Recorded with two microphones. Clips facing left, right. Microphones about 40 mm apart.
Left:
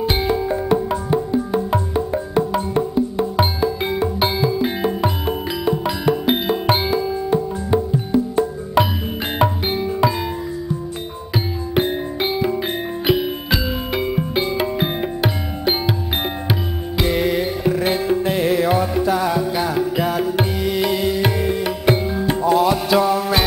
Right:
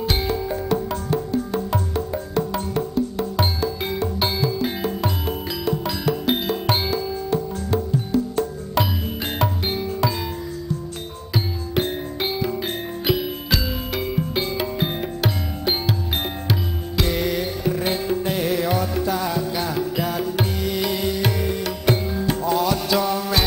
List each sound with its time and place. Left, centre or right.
0.0 s music: centre
11.3 s music: centre